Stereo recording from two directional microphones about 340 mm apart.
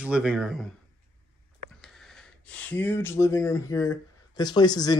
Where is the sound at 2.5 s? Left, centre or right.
Centre.